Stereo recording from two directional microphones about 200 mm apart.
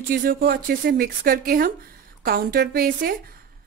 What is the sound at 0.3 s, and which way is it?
A woman's voice, 55° right (ahead or behind).